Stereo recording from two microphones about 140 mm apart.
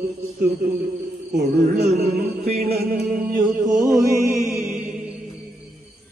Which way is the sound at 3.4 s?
30° right (ahead or behind).